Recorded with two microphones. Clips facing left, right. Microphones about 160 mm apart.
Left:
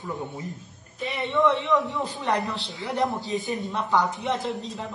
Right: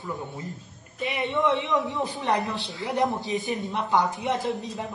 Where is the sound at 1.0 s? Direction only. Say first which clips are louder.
Left 2 dB; 20° right (ahead or behind).